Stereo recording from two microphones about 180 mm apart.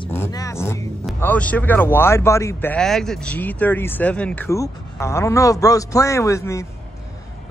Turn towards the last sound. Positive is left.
turn(degrees=15)  # may be behind; listen again after turning